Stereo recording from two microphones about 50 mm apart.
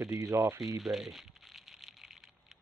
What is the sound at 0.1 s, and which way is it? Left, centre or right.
Speech, right.